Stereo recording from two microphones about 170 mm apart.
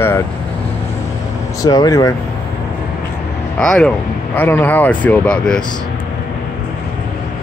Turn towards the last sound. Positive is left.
turn(degrees=5)  # may be behind; listen again after turning